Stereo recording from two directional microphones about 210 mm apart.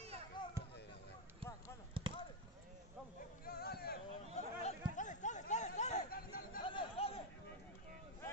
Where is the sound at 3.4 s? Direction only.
50° left (ahead or behind).